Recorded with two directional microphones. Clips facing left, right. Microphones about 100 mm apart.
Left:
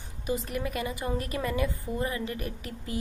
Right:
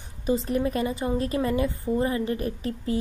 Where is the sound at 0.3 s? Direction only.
30° right (ahead or behind).